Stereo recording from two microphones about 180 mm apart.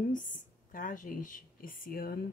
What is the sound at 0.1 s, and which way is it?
Speech, 50° left (ahead or behind).